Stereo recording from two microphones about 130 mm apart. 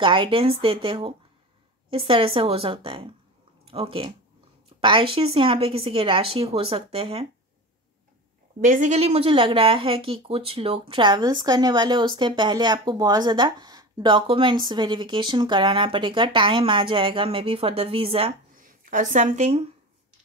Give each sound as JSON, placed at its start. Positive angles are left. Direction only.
{"t": 0.0, "sound": "speech", "side_deg": -40}
{"t": 8.5, "sound": "speech", "side_deg": -85}
{"t": 18.6, "sound": "speech", "side_deg": -85}